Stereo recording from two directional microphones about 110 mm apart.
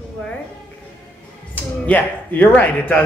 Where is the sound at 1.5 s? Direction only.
15° left (ahead or behind).